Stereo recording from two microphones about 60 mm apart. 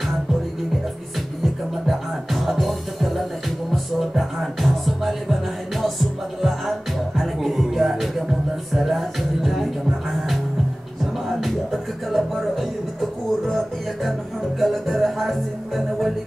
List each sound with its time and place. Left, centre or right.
1.4 s music: centre
11.2 s music: centre